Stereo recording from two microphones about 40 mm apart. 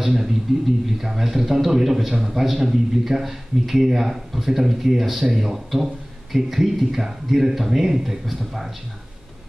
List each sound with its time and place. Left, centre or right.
0.0 s a man's voice: centre